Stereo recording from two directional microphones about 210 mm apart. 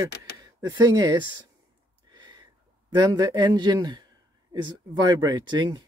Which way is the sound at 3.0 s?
20° right (ahead or behind).